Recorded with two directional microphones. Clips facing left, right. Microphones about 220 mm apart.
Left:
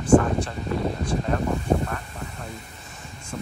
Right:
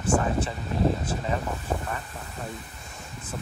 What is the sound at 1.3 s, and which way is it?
Speech, centre (ahead or behind).